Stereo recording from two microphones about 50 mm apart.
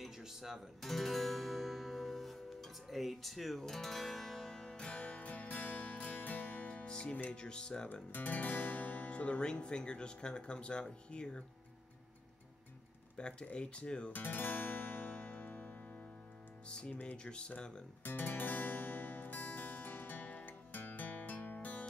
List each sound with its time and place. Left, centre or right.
0.0 s guitar: centre
0.8 s music: centre; by 7.2 s left
7.2 s speech: centre
7.9 s speech: left; by 11.4 s centre
13.2 s speech: left
14.1 s music: left
16.6 s speech: centre
16.9 s speech: left
17.2 s speech: centre
18.0 s music: left